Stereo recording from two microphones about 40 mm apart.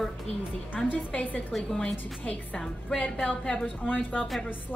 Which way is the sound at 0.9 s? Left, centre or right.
Left.